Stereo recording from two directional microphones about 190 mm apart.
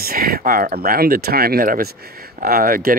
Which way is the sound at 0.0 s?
50° right (ahead or behind).